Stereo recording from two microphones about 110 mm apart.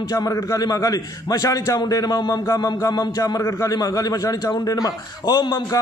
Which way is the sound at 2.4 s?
30° left (ahead or behind).